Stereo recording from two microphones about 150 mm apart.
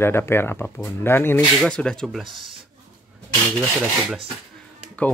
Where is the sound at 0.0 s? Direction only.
15° left (ahead or behind).